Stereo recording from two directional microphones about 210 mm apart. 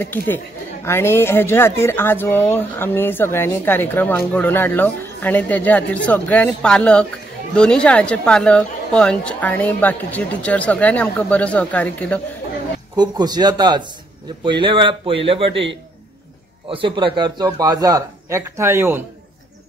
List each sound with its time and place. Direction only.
0.0 s a woman's voice: 10° left (ahead or behind)
12.9 s speech: 20° right (ahead or behind)
15.5 s a man's voice: 60° right (ahead or behind)
16.7 s speech: 25° right (ahead or behind)